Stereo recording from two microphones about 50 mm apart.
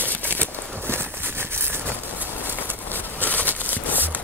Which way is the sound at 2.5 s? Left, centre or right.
Left.